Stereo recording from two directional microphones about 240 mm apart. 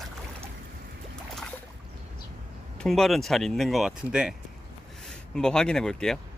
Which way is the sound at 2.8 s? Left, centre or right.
Centre.